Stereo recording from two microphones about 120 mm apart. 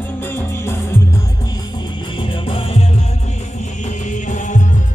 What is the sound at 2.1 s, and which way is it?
Music, 45° left (ahead or behind).